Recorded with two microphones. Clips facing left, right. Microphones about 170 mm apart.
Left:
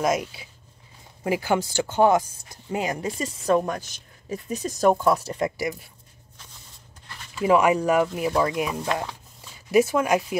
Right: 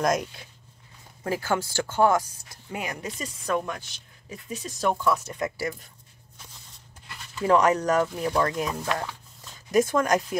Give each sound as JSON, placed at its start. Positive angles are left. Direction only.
{"t": 0.0, "sound": "speech", "side_deg": 5}
{"t": 5.6, "sound": "speech", "side_deg": 15}
{"t": 7.1, "sound": "speech", "side_deg": 5}
{"t": 8.9, "sound": "a sound", "side_deg": 10}